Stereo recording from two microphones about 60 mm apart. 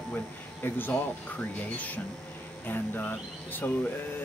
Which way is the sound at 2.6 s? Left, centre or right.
Left.